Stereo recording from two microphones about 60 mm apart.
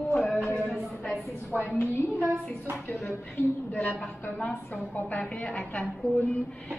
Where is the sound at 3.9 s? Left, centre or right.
Left.